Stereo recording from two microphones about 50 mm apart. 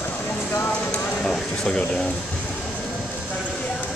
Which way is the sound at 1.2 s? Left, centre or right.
Centre.